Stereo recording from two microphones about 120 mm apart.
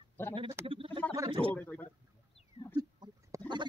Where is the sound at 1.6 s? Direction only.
15° left (ahead or behind).